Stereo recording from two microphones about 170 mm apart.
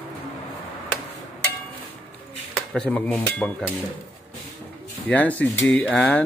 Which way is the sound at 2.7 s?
5° left (ahead or behind).